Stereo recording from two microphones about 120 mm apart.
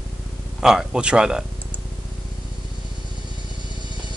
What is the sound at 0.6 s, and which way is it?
Speech, 5° right (ahead or behind).